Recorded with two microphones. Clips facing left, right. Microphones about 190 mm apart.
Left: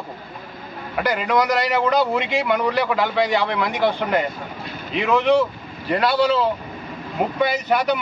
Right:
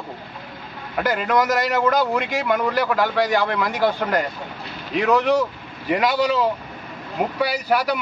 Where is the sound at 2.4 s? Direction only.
Centre (ahead or behind).